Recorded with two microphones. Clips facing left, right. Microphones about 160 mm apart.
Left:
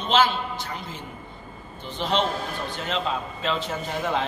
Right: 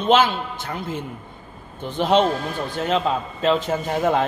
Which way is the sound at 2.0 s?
50° right (ahead or behind).